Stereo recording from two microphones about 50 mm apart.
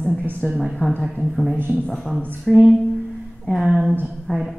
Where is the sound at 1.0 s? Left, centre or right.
Centre.